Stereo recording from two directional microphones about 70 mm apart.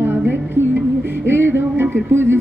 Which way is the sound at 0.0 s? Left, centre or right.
Right.